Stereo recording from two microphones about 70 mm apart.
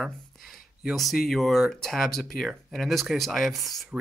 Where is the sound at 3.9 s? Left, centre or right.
Centre.